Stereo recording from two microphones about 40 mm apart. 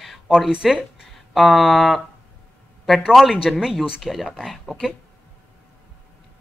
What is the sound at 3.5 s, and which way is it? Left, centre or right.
Speech, centre.